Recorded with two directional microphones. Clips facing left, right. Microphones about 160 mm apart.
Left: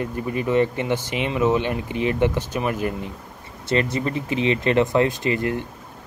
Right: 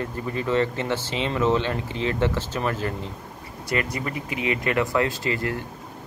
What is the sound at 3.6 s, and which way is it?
Speech, 25° left (ahead or behind).